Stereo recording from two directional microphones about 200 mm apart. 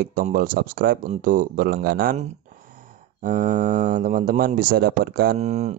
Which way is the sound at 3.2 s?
40° right (ahead or behind).